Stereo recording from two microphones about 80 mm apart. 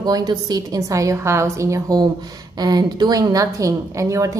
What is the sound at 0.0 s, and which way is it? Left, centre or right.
A woman's voice, right.